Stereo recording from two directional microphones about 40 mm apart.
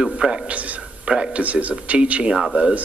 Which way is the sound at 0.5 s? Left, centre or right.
Right.